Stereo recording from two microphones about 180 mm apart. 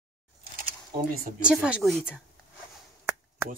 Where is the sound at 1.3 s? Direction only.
5° right (ahead or behind).